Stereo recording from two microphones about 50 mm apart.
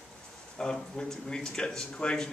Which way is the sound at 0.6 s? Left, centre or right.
Centre.